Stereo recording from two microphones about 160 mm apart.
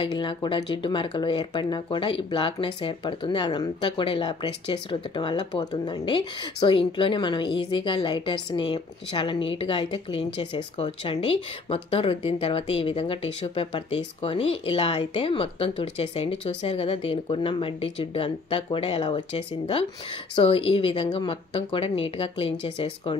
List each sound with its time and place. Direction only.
0.0 s speech: 30° left (ahead or behind)